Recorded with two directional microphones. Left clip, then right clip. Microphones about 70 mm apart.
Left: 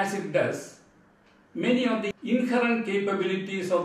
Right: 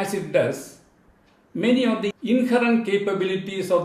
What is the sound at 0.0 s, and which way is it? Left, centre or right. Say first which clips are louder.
Speech: right 4 dB; left.